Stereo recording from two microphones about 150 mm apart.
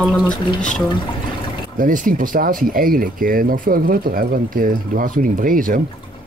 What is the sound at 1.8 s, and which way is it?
Speech, 65° right (ahead or behind).